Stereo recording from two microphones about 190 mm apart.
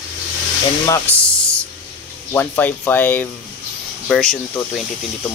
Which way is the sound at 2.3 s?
10° left (ahead or behind).